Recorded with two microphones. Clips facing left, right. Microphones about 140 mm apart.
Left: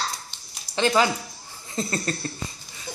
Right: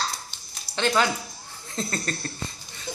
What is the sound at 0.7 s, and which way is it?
A woman's voice, 5° left (ahead or behind).